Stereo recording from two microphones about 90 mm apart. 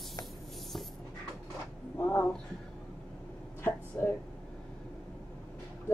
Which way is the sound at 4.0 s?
25° left (ahead or behind).